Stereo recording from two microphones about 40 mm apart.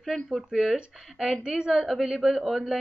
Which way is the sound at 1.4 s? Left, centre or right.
Centre.